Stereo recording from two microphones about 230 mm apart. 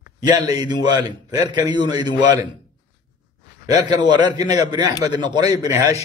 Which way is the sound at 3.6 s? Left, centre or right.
Centre.